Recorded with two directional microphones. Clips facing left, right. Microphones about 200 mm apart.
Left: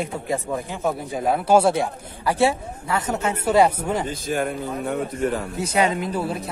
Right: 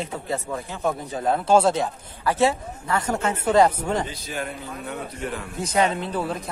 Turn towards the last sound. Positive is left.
turn(degrees=10)  # may be behind; listen again after turning